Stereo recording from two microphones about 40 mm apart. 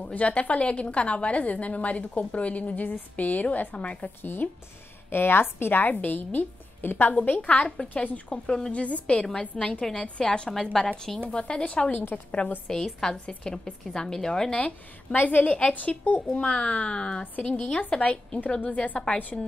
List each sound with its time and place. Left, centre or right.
0.1 s a woman's voice: left
4.2 s a woman's voice: left
5.1 s a woman's voice: left
5.9 s a woman's voice: left
7.2 s a woman's voice: left
8.5 s speech: centre
8.7 s a woman's voice: left
11.9 s a woman's voice: left
12.6 s speech: centre
13.2 s speech: left
14.5 s a woman's voice: left
16.3 s a woman's voice: left